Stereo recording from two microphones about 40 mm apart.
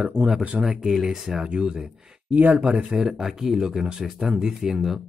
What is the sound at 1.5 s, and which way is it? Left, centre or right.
Speech, right.